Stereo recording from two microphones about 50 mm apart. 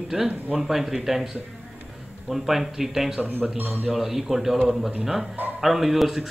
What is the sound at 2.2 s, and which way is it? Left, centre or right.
Speech, centre.